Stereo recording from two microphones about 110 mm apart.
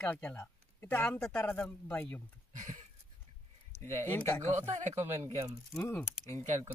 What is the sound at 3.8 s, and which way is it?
Speech, 20° left (ahead or behind).